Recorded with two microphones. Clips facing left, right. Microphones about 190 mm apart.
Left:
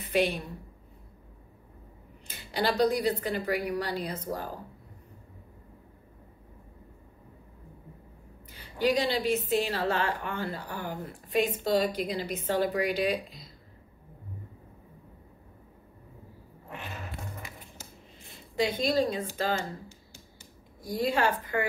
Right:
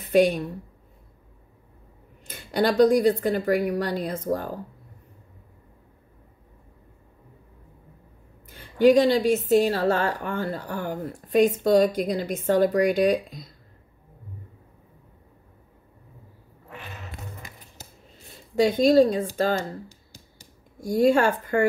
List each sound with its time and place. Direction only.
0.0 s a woman's voice: 45° right (ahead or behind)
2.2 s a woman's voice: 45° right (ahead or behind)
8.7 s a woman's voice: 50° right (ahead or behind)
18.6 s speech: 45° right (ahead or behind)